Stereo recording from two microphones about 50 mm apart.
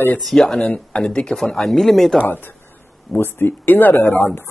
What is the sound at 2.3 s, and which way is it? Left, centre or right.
Speech, left.